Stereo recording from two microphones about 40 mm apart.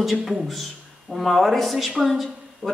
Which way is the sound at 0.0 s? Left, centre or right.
Centre.